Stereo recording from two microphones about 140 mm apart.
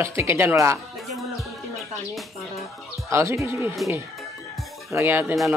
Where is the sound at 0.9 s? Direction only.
Centre (ahead or behind).